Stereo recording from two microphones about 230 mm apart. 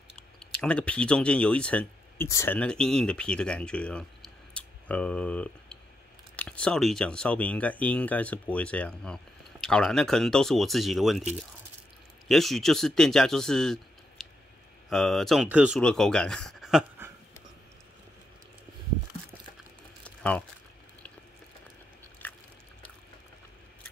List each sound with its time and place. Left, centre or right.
0.1 s speech: centre
12.3 s speech: centre
20.0 s crumpling: centre
22.2 s a sound: centre